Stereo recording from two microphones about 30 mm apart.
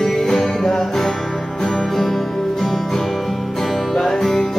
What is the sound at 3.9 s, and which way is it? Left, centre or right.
Music, centre.